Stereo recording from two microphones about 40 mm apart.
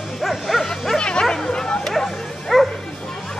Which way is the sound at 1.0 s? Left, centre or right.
Left.